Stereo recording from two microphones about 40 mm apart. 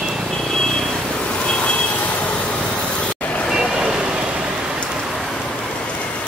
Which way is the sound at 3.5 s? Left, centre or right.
Centre.